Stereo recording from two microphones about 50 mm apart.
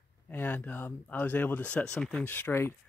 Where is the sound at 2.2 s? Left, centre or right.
Left.